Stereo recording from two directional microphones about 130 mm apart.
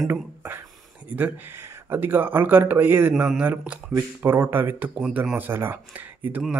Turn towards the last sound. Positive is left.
turn(degrees=-15)  # may be behind; listen again after turning